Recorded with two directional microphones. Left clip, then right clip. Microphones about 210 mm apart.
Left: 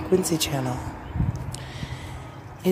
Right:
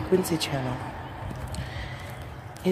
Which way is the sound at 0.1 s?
10° left (ahead or behind).